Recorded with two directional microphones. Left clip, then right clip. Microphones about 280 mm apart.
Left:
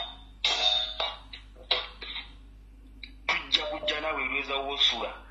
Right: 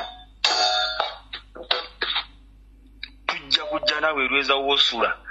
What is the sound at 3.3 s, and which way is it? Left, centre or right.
Music, right.